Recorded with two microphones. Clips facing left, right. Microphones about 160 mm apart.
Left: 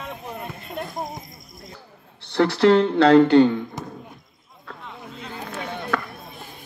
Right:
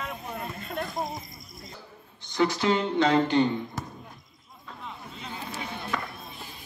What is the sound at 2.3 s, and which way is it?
Speech, 75° left (ahead or behind).